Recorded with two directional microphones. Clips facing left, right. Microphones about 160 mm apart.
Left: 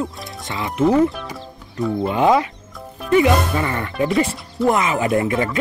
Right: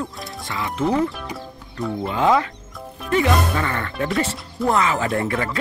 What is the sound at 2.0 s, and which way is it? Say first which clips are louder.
Speech: left 2 dB; 15° left (ahead or behind).